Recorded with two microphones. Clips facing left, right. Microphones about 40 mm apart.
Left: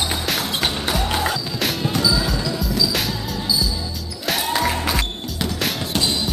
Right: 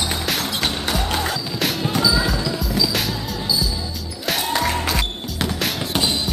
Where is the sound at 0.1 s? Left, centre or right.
Centre.